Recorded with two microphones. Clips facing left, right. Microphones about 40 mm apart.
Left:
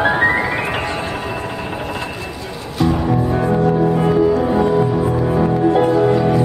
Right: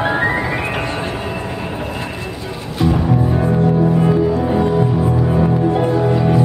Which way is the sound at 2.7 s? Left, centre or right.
Centre.